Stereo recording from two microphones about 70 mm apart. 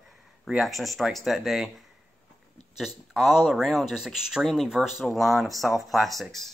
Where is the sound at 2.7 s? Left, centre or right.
Centre.